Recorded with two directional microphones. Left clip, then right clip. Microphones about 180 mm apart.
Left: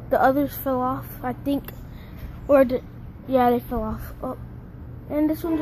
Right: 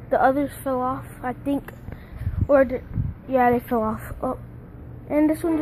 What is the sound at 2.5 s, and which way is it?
Speech, 5° left (ahead or behind).